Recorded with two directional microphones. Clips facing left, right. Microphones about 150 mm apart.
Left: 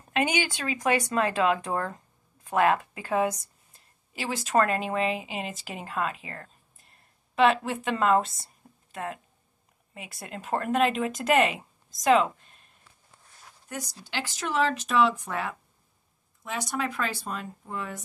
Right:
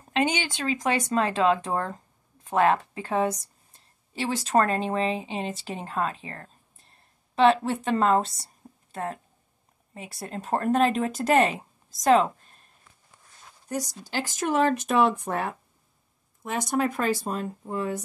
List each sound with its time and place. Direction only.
0.1 s a woman's voice: 25° right (ahead or behind)
13.7 s speech: 40° right (ahead or behind)